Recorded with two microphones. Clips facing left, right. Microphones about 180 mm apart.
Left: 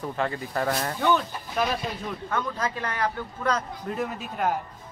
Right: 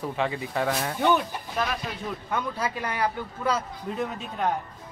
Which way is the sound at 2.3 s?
10° right (ahead or behind).